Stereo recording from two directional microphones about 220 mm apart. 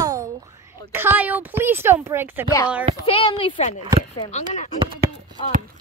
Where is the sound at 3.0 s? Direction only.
25° left (ahead or behind).